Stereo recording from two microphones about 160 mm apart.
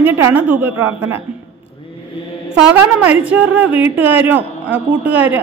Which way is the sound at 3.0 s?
10° right (ahead or behind).